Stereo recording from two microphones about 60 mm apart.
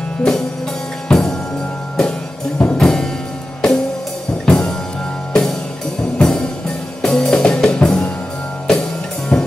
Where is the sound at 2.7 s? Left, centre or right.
Centre.